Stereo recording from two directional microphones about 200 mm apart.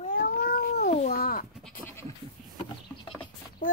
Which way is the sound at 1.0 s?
50° left (ahead or behind).